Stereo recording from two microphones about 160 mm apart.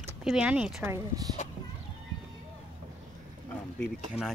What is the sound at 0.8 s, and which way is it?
Speech, 20° right (ahead or behind).